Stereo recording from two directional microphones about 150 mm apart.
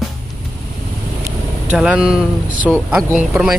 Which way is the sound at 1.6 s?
5° right (ahead or behind).